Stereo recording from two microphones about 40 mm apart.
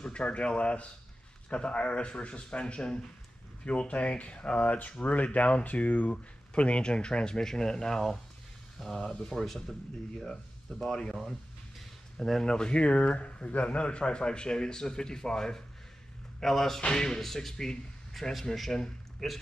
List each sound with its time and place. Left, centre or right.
0.0 s speech: left; by 9.8 s centre
10.8 s speech: centre
12.4 s speech: centre
12.7 s speech: left; by 16.8 s centre
16.8 s speech: centre
17.2 s a man's voice: centre